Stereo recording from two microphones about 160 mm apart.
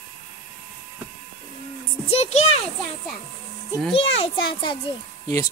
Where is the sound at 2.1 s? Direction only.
45° left (ahead or behind).